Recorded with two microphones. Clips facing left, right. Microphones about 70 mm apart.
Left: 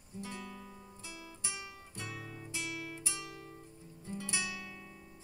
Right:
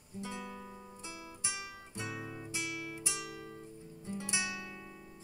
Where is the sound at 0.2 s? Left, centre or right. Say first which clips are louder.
Right 2 dB; centre.